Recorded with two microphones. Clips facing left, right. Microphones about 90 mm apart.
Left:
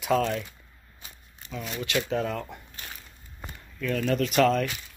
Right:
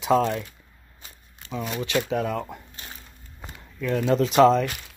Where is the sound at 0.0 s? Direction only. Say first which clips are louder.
Right 4 dB; 10° right (ahead or behind).